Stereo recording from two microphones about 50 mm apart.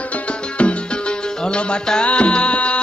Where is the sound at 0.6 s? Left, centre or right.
Left.